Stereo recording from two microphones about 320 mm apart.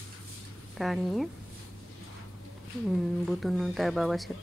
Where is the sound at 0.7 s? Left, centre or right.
Centre.